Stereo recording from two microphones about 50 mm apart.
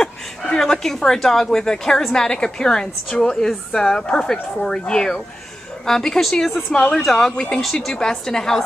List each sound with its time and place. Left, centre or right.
0.0 s a woman's voice: centre
7.3 s a woman's voice: centre